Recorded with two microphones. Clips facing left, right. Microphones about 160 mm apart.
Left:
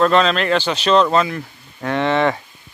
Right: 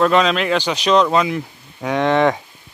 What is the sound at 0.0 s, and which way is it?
Speech, 10° right (ahead or behind).